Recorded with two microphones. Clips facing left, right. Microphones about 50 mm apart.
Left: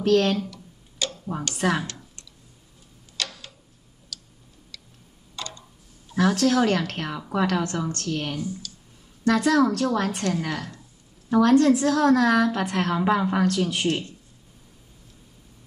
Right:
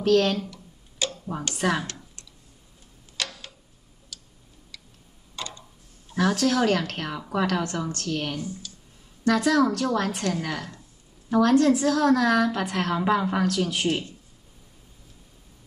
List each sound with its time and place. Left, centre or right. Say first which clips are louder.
0.0 s a woman's voice: left 1 dB; centre
0.5 s a sound: left 2 dB; right
1.5 s a woman's voice: left 1 dB; centre
3.2 s tick-tock: even; right
5.3 s tick-tock: even; right
6.3 s a woman's voice: left 1 dB; centre